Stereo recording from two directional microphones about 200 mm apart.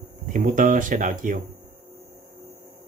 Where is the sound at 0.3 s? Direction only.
45° right (ahead or behind).